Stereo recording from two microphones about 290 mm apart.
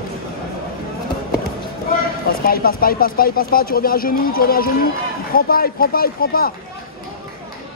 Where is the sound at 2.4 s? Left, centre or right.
Left.